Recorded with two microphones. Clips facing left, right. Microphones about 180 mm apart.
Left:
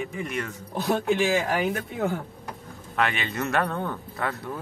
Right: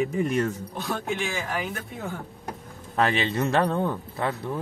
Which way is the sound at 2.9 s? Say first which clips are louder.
Right 3 dB; 35° right (ahead or behind).